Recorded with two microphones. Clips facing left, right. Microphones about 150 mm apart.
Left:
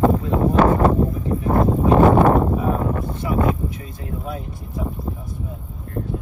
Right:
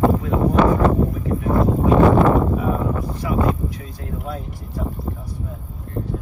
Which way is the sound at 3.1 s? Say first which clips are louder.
Even; centre (ahead or behind).